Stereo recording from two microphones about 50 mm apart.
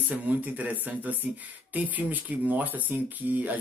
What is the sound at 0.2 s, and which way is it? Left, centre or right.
Speech, right.